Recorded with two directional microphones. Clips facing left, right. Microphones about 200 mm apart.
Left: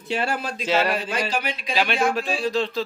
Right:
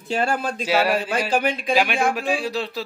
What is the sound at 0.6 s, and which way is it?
Speech, 10° right (ahead or behind).